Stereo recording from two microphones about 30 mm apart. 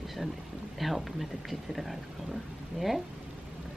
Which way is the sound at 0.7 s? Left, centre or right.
Centre.